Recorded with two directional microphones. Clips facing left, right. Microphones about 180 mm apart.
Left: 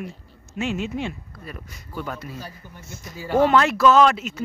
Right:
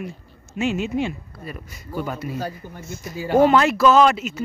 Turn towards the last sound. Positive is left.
turn(degrees=-5)  # may be behind; listen again after turning